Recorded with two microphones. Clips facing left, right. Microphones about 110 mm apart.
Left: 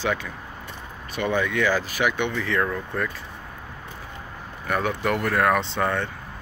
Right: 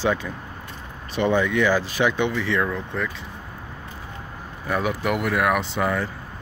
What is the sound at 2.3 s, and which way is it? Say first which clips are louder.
Speech: right 1 dB; 5° right (ahead or behind).